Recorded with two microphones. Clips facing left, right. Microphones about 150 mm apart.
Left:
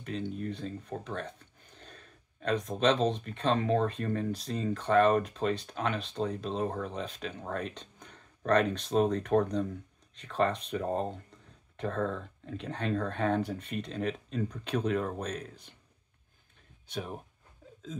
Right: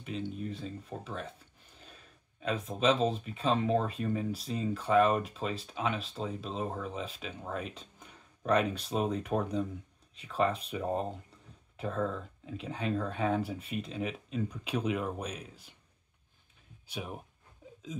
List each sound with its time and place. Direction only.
0.0 s speech: centre (ahead or behind)
16.8 s speech: 10° right (ahead or behind)
17.6 s hiccup: 15° right (ahead or behind)